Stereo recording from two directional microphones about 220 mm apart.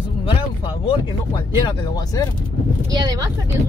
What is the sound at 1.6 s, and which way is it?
Speech, 15° left (ahead or behind).